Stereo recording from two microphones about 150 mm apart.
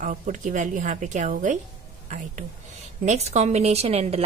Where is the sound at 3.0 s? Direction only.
50° right (ahead or behind).